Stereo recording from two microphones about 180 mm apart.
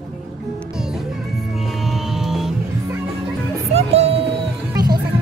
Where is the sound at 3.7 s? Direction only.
35° right (ahead or behind).